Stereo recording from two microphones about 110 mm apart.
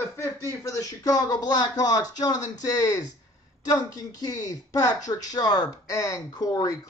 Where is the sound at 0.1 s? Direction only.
25° left (ahead or behind).